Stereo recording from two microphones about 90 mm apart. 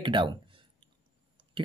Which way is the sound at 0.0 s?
60° right (ahead or behind).